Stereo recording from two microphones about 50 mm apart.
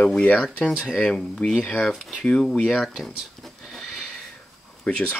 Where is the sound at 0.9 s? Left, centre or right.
Centre.